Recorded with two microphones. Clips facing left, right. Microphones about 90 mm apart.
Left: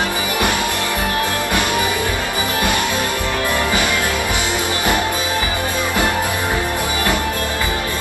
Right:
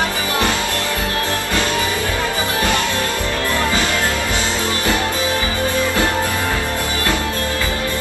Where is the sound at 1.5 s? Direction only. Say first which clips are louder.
Even; 15° left (ahead or behind).